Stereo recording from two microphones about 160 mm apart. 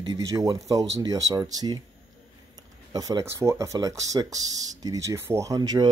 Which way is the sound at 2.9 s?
20° right (ahead or behind).